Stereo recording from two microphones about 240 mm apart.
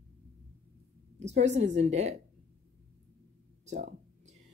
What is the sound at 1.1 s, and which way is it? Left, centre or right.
Speech, right.